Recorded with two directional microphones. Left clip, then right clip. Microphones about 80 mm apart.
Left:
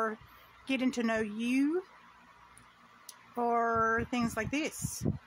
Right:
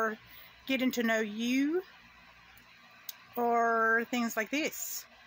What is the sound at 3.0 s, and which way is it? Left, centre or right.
A woman's voice, centre.